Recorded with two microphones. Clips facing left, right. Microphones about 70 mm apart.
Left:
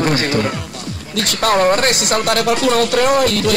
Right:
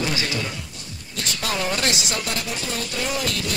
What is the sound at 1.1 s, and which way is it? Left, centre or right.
Speech, left.